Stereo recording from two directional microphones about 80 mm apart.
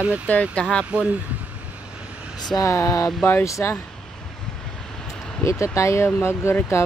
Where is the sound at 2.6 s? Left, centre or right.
Left.